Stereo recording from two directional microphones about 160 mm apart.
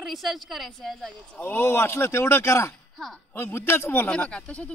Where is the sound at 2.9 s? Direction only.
Centre (ahead or behind).